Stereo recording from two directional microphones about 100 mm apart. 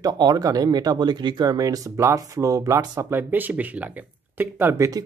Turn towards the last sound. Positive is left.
turn(degrees=-15)  # may be behind; listen again after turning